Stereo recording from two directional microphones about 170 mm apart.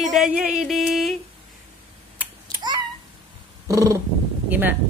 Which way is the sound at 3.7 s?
20° right (ahead or behind).